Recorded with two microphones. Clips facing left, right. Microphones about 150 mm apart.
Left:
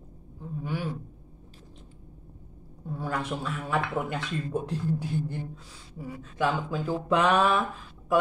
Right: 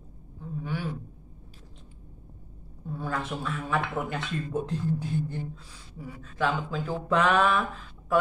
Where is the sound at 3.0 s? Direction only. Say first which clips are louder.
Left 1 dB; 15° left (ahead or behind).